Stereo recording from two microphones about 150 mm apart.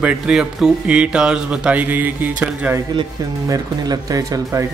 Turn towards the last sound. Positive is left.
turn(degrees=-20)  # may be behind; listen again after turning